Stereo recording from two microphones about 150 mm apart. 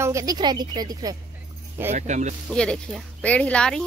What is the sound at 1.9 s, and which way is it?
Speech, 55° right (ahead or behind).